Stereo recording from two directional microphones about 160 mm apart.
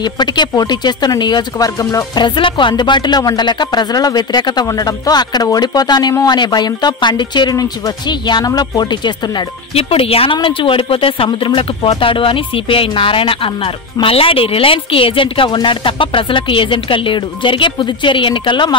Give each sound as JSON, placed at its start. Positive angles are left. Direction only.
{"t": 0.0, "sound": "speech", "side_deg": 25}
{"t": 9.8, "sound": "a woman's voice", "side_deg": 35}